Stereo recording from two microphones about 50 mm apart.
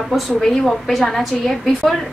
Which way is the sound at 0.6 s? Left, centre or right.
Centre.